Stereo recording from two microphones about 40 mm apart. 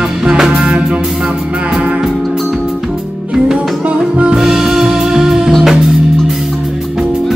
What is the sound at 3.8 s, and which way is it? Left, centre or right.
Music, right.